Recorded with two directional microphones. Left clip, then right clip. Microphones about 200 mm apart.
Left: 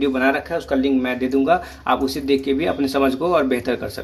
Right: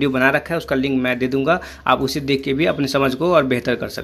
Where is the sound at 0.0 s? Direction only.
45° right (ahead or behind).